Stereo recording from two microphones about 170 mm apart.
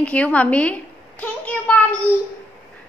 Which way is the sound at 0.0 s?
10° left (ahead or behind).